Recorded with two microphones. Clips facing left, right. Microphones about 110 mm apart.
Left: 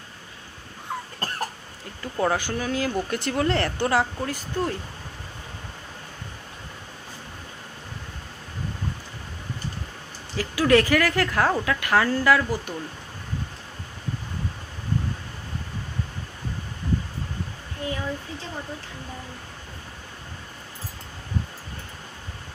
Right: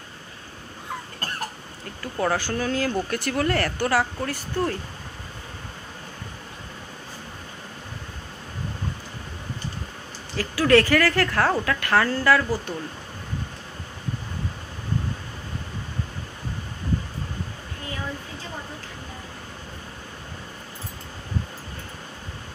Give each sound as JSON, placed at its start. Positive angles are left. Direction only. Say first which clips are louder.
{"t": 2.1, "sound": "speech", "louder": "even", "side_deg": 15}
{"t": 10.3, "sound": "speech", "louder": "right 1 dB", "side_deg": 15}